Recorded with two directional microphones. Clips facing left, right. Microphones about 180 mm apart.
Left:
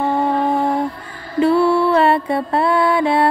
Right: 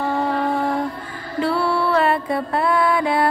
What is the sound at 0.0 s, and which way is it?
Mantra, 20° left (ahead or behind).